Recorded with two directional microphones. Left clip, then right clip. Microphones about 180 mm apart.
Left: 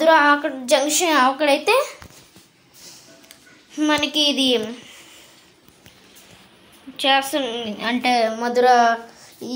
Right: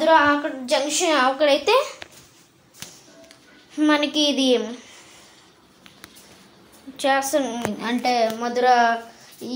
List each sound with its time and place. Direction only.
0.0 s a woman's voice: 20° left (ahead or behind)
3.7 s a woman's voice: centre (ahead or behind)
7.0 s a woman's voice: 5° right (ahead or behind); by 8.9 s 15° left (ahead or behind)